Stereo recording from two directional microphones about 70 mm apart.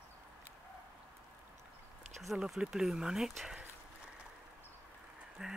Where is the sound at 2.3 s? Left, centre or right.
Centre.